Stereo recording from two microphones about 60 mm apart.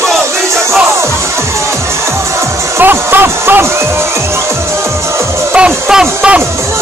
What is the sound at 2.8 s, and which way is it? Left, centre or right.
Music, right.